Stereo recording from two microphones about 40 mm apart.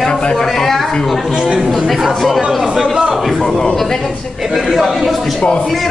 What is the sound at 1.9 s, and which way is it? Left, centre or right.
A man's voice, centre.